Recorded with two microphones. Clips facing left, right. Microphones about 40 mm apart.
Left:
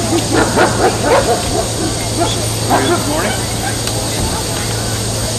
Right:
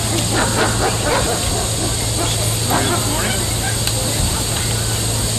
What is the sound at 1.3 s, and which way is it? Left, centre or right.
Bow-wow, right.